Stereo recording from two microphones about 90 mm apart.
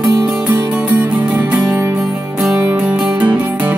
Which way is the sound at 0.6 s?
15° right (ahead or behind).